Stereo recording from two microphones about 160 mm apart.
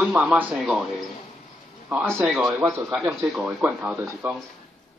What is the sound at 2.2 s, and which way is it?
Speech, 5° right (ahead or behind).